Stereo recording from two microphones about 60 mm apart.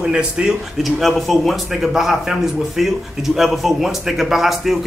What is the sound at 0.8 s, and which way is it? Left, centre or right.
A man's voice, centre.